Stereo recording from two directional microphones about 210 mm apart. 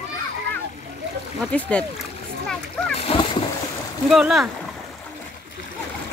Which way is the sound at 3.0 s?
25° left (ahead or behind).